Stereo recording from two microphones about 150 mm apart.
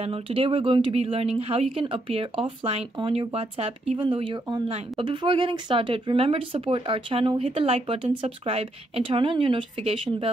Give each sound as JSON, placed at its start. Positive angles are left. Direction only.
{"t": 0.0, "sound": "speech", "side_deg": -40}